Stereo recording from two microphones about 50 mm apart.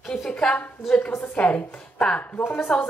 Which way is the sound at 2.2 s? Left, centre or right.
Left.